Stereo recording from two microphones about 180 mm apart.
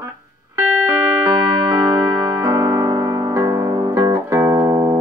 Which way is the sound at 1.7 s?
20° right (ahead or behind).